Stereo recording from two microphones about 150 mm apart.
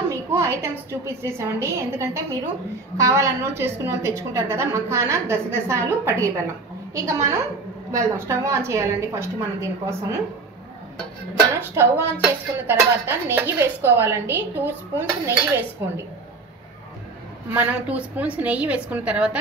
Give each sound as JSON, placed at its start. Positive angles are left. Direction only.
{"t": 0.1, "sound": "a woman's voice", "side_deg": -20}
{"t": 11.7, "sound": "speech", "side_deg": -15}
{"t": 17.6, "sound": "speech", "side_deg": -10}